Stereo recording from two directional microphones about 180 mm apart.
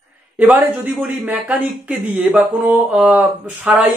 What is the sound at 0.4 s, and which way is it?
Speech, 10° right (ahead or behind).